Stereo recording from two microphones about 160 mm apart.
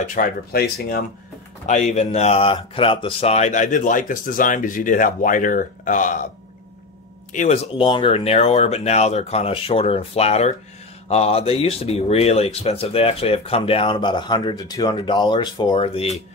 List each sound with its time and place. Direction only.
0.0 s speech: 60° left (ahead or behind); by 1.0 s 75° left (ahead or behind)
1.7 s speech: 45° left (ahead or behind)
7.3 s speech: 45° left (ahead or behind)